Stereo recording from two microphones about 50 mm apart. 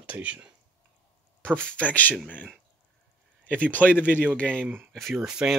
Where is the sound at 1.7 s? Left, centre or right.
Left.